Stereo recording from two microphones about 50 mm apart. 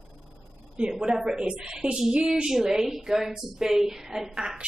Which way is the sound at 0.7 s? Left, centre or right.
Centre.